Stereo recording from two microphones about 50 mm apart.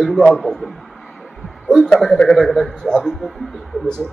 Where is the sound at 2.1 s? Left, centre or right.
Centre.